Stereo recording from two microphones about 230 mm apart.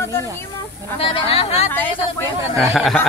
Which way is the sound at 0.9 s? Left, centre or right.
Left.